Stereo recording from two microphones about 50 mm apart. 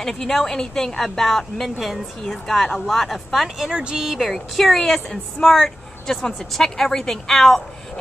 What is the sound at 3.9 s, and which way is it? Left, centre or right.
A woman's voice, centre.